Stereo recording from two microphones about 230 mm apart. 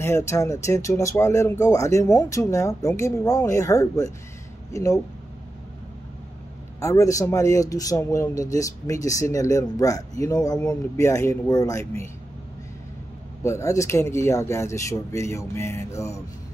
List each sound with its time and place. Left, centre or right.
0.0 s speech: centre
6.8 s speech: centre
13.4 s speech: centre